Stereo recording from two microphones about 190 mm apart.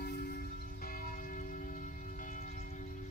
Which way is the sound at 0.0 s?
50° left (ahead or behind).